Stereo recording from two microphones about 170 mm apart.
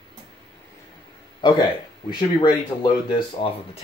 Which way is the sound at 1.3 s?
25° left (ahead or behind).